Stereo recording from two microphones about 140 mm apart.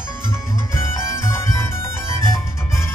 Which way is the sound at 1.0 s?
20° left (ahead or behind).